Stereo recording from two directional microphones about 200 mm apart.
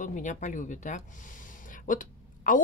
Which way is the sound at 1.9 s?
40° left (ahead or behind).